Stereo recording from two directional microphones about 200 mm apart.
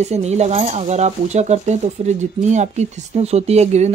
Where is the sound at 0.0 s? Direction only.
35° right (ahead or behind).